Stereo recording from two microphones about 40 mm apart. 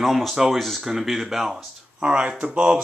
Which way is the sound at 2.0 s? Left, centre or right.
Right.